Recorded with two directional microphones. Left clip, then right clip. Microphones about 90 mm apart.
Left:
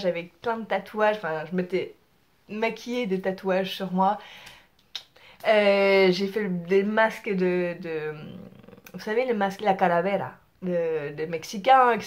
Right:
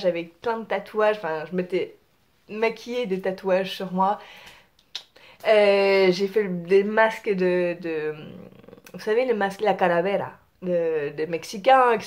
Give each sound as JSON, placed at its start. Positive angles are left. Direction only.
{"t": 0.0, "sound": "speech", "side_deg": -20}
{"t": 7.1, "sound": "speech", "side_deg": -20}